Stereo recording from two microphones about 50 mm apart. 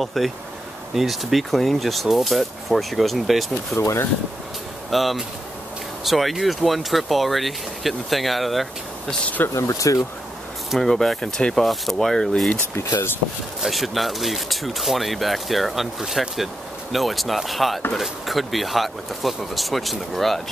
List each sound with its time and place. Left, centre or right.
0.0 s speech: centre
3.7 s speech: left
4.9 s speech: centre
9.5 s speech: left
10.8 s speech: centre
12.7 s speech: left
13.6 s speech: centre